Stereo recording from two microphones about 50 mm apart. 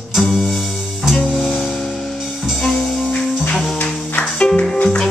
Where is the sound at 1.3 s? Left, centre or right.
Centre.